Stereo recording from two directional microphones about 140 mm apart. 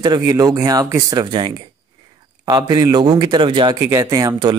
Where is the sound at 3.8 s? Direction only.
20° right (ahead or behind).